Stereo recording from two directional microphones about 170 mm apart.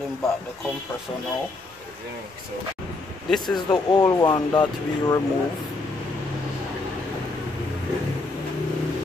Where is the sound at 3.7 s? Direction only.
25° left (ahead or behind).